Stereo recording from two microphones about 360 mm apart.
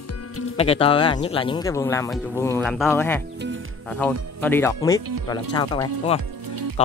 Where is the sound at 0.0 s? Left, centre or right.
Left.